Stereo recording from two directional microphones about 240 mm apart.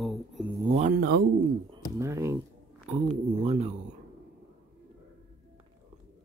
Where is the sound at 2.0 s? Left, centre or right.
Centre.